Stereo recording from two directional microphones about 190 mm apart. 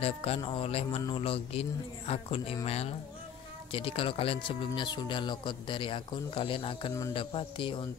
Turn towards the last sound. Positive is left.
turn(degrees=25)  # may be behind; listen again after turning